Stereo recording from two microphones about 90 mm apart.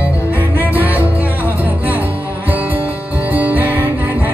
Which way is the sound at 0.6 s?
20° right (ahead or behind).